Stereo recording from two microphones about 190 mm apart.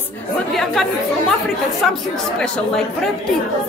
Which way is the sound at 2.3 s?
5° left (ahead or behind).